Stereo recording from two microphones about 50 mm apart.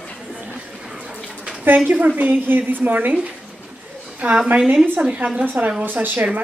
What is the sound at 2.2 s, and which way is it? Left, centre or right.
A woman's voice, right.